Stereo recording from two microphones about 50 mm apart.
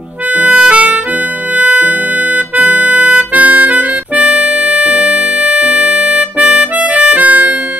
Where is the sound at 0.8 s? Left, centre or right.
Right.